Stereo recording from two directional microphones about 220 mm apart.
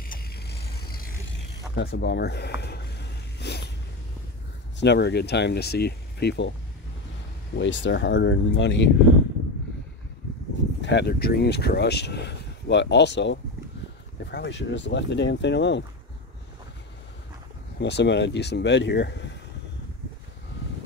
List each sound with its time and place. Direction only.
0.0 s a sound: 45° left (ahead or behind)
4.7 s speech: 50° left (ahead or behind)
7.5 s speech: 55° left (ahead or behind)
10.8 s speech: 50° left (ahead or behind)
17.7 s speech: 50° left (ahead or behind)